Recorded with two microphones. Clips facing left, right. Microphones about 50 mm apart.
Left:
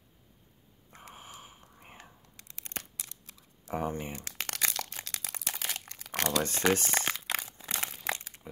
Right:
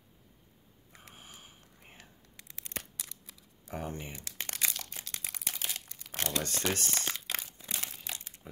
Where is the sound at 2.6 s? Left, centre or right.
Left.